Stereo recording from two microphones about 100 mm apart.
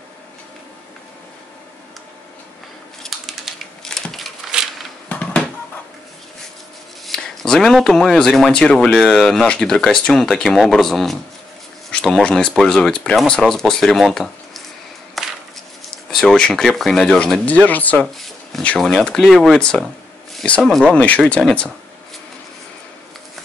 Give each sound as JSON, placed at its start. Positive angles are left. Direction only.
{"t": 3.0, "sound": "crushing", "side_deg": 0}
{"t": 5.1, "sound": "bouncing", "side_deg": 15}
{"t": 7.1, "sound": "speech", "side_deg": 5}
{"t": 15.2, "sound": "a sound", "side_deg": 0}
{"t": 16.1, "sound": "speech", "side_deg": 5}
{"t": 17.6, "sound": "speech", "side_deg": 15}
{"t": 19.0, "sound": "speech", "side_deg": 5}